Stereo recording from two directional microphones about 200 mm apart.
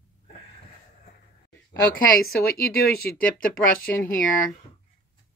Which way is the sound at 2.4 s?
50° left (ahead or behind).